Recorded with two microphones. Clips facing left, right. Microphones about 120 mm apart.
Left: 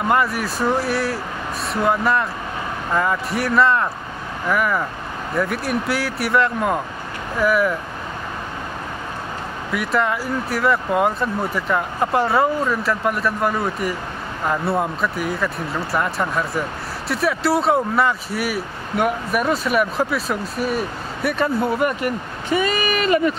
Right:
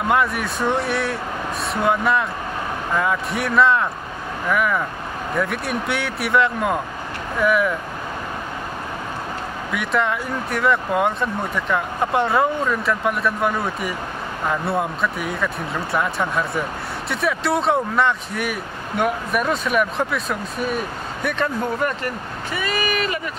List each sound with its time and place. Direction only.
0.1 s speech: centre (ahead or behind)
9.7 s speech: centre (ahead or behind)